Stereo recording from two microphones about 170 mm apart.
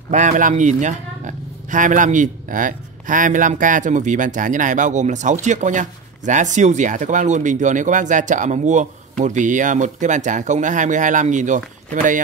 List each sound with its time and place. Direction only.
0.1 s speech: 45° right (ahead or behind)